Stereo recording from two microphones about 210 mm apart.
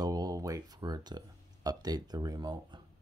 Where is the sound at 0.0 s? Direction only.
20° right (ahead or behind).